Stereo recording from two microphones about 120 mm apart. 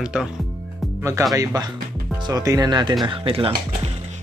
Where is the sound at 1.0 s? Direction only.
25° right (ahead or behind).